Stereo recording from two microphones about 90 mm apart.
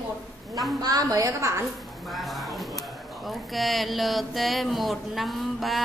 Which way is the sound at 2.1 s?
Centre (ahead or behind).